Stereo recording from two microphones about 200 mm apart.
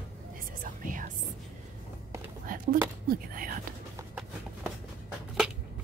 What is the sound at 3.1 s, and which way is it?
Whispering, 45° right (ahead or behind).